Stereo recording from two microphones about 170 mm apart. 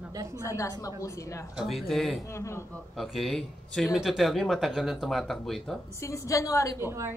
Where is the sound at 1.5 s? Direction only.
Centre (ahead or behind).